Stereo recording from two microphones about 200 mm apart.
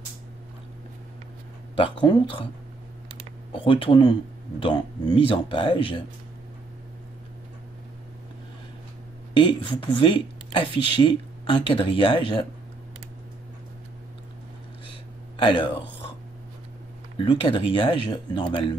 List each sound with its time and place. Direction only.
1.8 s speech: 25° left (ahead or behind)
3.5 s speech: 25° left (ahead or behind)
9.5 s speech: 25° left (ahead or behind)
15.3 s a sound: 25° left (ahead or behind)
17.2 s speech: 25° left (ahead or behind)